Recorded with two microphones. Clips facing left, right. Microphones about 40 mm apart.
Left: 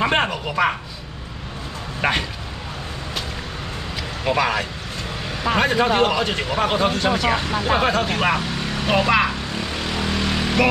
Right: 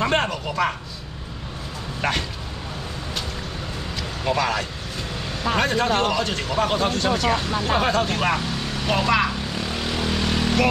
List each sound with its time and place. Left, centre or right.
0.0 s speech: centre
2.0 s speech: centre
4.2 s a man's voice: centre
10.3 s vehicle: centre